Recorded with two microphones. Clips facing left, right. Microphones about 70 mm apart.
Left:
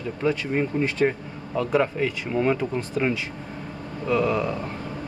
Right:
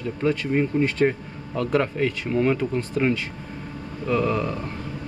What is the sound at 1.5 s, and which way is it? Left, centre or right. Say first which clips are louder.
Speech: even; centre.